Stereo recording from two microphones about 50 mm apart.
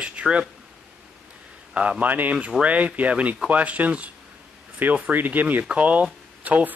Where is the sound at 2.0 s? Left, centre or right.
Right.